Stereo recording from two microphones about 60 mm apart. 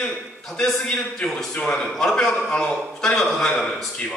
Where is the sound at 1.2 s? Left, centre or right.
Centre.